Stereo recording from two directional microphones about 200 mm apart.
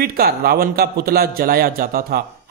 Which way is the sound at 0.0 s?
50° right (ahead or behind).